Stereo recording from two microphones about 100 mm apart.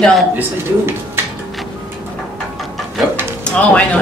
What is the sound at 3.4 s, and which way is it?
Speech, 15° left (ahead or behind).